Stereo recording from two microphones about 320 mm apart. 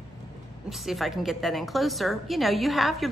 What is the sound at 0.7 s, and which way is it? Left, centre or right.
A woman's voice, centre.